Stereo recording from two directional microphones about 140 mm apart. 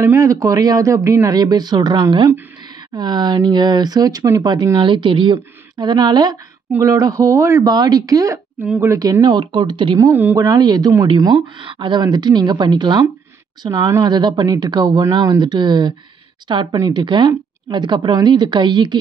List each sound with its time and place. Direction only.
0.0 s speech: 20° right (ahead or behind)
9.9 s speech: 15° right (ahead or behind)
11.3 s speech: 35° right (ahead or behind)